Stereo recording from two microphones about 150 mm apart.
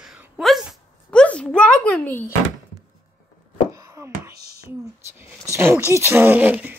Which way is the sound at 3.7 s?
20° right (ahead or behind).